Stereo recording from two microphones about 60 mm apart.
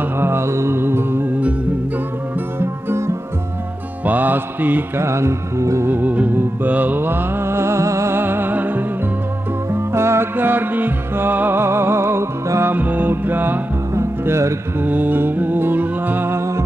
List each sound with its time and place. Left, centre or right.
0.0 s music: right
2.6 s music: right
4.0 s mantra: right
4.9 s music: right
5.9 s music: right
8.1 s music: right
9.7 s music: right
10.3 s music: right
12.7 s music: right
13.9 s music: right
14.8 s music: right